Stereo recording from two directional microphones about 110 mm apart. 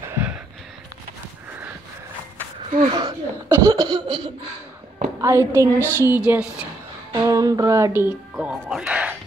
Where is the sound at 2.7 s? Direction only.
45° right (ahead or behind).